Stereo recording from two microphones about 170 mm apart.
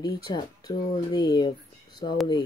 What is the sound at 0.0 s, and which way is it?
Speech, 25° left (ahead or behind).